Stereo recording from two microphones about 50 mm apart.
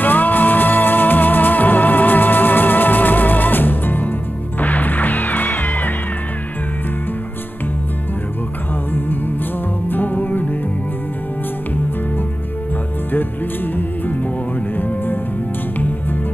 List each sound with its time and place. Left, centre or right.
0.0 s music: left
9.8 s music: left
13.7 s music: left